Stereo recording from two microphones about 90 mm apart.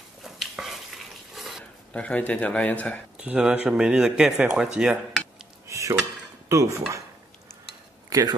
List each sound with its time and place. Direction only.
0.2 s a sound: centre (ahead or behind)
1.9 s a man's voice: 15° left (ahead or behind)
3.2 s a man's voice: 10° right (ahead or behind)
4.7 s dishes: 10° right (ahead or behind)
5.7 s dishes: 35° right (ahead or behind)
6.5 s speech: 35° right (ahead or behind)
8.1 s speech: 45° right (ahead or behind)